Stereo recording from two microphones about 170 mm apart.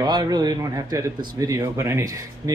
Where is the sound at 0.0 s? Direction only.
25° right (ahead or behind).